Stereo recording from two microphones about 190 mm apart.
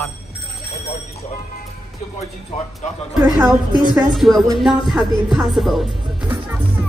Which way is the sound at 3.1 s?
10° right (ahead or behind).